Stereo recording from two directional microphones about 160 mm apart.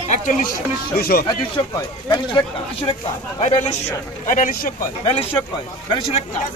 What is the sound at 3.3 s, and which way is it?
Speech, 45° left (ahead or behind).